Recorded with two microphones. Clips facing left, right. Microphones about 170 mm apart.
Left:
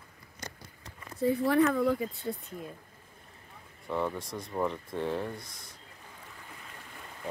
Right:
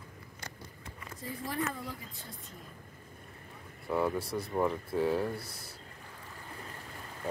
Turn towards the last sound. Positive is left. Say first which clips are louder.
# right 2 dB
turn(degrees=-5)  # may be behind; listen again after turning